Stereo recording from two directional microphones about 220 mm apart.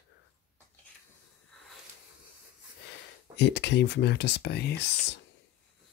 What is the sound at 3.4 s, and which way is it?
Speech, 50° left (ahead or behind).